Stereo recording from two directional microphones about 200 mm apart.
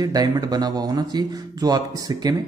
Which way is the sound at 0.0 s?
20° right (ahead or behind).